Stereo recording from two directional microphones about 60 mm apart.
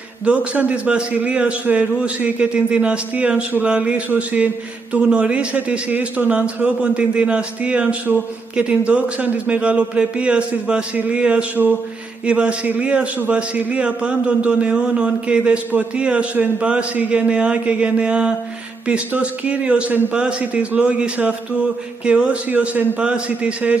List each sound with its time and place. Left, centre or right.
0.2 s a man's voice: right